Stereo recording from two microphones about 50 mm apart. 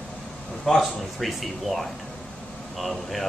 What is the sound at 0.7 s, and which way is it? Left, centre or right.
Speech, centre.